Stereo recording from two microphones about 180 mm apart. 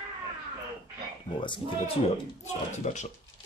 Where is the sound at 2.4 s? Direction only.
40° left (ahead or behind).